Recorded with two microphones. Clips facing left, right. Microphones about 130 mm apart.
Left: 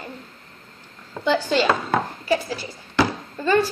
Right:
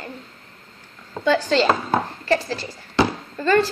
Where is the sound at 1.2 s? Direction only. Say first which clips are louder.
Right 2 dB; 10° left (ahead or behind).